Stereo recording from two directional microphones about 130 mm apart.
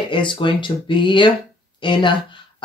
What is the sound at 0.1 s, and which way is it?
Speech, 40° left (ahead or behind).